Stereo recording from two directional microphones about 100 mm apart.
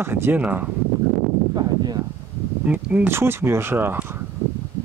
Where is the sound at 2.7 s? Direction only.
15° right (ahead or behind).